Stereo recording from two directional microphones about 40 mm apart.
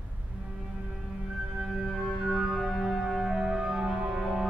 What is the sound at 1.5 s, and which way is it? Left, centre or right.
Music, centre.